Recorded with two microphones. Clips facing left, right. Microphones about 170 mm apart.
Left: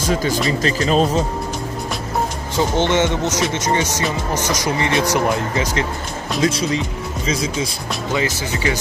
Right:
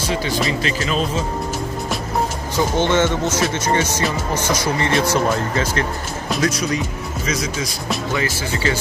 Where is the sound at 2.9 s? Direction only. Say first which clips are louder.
Even; 20° left (ahead or behind).